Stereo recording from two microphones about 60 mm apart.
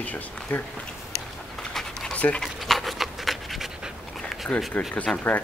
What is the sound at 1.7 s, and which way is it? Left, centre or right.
Dog, centre.